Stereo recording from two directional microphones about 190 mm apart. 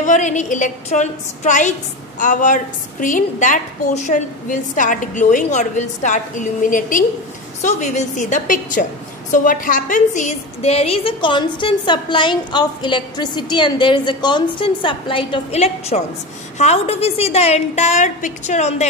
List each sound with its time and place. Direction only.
0.0 s a woman's voice: 40° left (ahead or behind)